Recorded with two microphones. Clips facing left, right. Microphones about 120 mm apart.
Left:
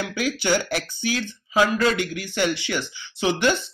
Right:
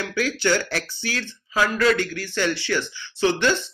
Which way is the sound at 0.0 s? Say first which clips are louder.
Right 1 dB; 15° left (ahead or behind).